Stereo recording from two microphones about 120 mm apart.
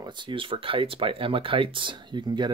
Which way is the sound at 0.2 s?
45° right (ahead or behind).